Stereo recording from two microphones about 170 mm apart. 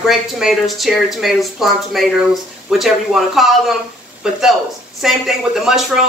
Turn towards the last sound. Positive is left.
turn(degrees=-5)  # may be behind; listen again after turning